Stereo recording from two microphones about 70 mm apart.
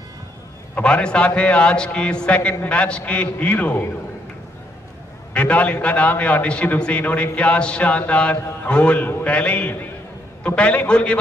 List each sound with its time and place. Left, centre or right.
0.8 s a man's voice: centre
5.3 s a man's voice: centre